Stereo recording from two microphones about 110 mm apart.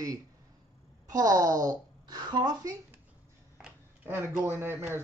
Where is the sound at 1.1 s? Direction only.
35° right (ahead or behind).